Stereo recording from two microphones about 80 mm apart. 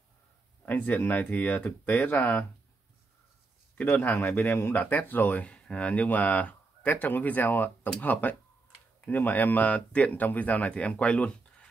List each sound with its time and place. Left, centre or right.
0.7 s speech: left
3.7 s speech: left